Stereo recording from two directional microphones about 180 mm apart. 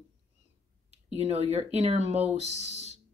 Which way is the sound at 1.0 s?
35° right (ahead or behind).